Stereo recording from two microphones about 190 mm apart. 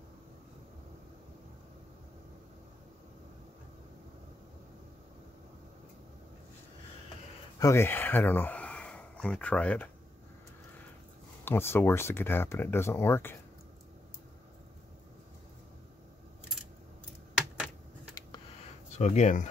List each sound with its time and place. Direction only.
7.5 s speech: 15° left (ahead or behind)
11.4 s speech: 10° left (ahead or behind)
18.9 s speech: 35° left (ahead or behind)